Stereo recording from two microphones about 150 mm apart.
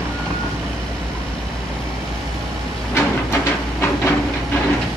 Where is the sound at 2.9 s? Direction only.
15° left (ahead or behind).